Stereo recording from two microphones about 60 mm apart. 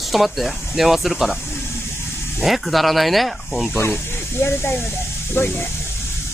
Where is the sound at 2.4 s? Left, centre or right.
Centre.